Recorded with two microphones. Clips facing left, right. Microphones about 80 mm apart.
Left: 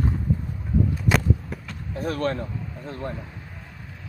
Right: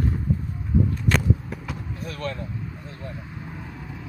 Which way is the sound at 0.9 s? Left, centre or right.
Centre.